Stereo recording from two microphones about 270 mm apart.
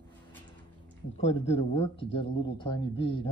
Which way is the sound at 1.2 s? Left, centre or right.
Left.